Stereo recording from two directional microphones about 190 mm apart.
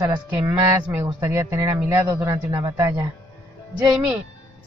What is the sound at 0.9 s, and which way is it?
A man's voice, 15° right (ahead or behind).